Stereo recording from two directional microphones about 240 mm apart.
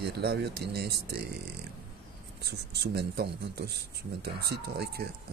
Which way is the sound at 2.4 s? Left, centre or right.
Right.